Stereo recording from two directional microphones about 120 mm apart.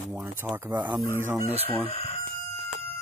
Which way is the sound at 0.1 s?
20° right (ahead or behind).